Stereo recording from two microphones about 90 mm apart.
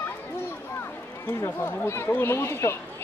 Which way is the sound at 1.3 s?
30° left (ahead or behind).